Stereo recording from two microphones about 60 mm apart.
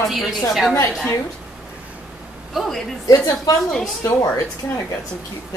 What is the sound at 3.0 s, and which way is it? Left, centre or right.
Speech, left.